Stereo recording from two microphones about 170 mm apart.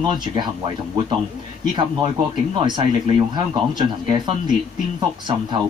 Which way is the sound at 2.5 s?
30° right (ahead or behind).